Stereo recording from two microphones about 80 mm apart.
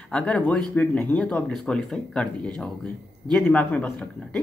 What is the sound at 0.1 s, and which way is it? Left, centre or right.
Speech, centre.